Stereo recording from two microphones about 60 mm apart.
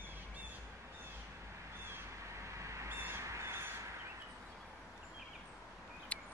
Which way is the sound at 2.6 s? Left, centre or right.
Right.